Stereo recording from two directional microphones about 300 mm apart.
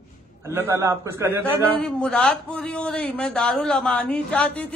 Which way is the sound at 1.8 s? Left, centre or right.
Centre.